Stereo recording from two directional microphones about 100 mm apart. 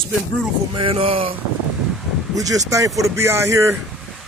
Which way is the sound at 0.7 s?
60° right (ahead or behind).